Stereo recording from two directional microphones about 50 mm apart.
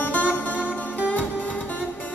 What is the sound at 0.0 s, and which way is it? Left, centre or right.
Music, left.